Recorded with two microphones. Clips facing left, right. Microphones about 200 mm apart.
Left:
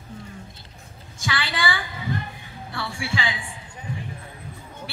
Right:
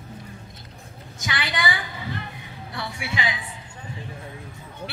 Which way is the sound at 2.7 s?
20° right (ahead or behind).